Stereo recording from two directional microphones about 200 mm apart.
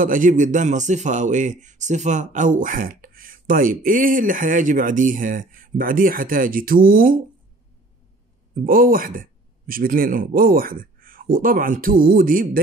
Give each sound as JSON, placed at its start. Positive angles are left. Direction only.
{"t": 0.0, "sound": "speech", "side_deg": -40}
{"t": 8.5, "sound": "speech", "side_deg": -45}